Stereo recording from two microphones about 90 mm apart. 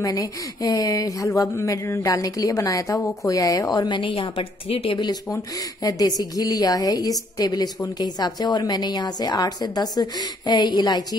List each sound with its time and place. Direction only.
0.0 s speech: 40° left (ahead or behind)
4.0 s a woman's voice: 70° left (ahead or behind)
5.3 s a woman's voice: 40° left (ahead or behind)